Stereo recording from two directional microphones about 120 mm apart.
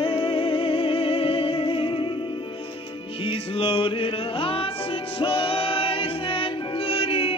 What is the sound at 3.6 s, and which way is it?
Music, 50° left (ahead or behind).